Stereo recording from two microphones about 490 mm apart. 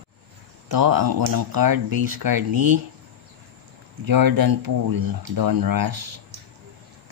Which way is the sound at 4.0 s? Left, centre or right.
Right.